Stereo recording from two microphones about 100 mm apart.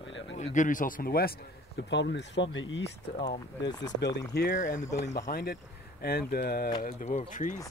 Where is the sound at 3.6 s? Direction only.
45° left (ahead or behind).